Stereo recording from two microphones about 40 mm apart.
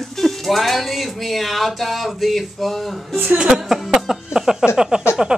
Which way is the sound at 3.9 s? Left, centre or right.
Centre.